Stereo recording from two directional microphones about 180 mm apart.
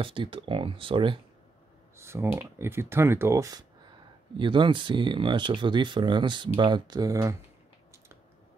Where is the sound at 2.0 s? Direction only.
15° right (ahead or behind).